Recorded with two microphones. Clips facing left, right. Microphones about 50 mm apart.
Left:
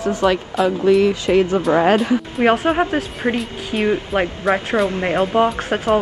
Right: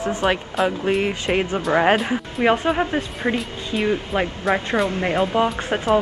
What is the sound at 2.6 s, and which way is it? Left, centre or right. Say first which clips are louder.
Speech: left 3 dB; centre.